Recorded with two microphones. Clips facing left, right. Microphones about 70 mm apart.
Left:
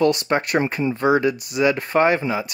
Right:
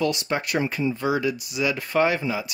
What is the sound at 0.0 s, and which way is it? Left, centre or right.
Speech, left.